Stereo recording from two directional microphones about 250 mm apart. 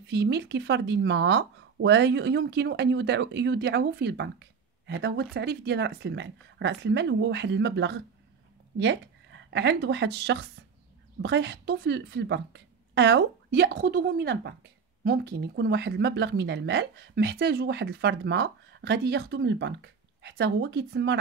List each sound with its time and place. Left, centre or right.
0.1 s speech: right